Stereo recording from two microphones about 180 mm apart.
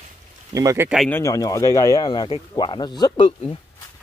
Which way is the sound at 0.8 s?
Centre (ahead or behind).